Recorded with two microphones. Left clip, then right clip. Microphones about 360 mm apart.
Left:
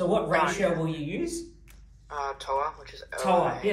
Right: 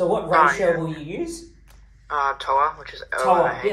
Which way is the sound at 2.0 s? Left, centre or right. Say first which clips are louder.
Right 9 dB; right.